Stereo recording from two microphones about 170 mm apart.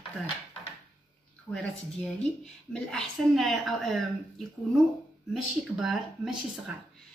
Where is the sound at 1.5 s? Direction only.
5° left (ahead or behind).